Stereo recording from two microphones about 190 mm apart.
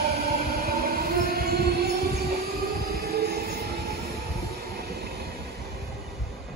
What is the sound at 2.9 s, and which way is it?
Train, 55° right (ahead or behind).